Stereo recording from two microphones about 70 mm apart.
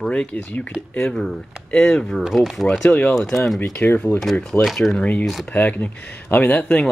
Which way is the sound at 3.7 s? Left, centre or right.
Left.